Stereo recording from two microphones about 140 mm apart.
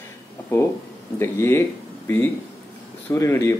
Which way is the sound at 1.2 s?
15° left (ahead or behind).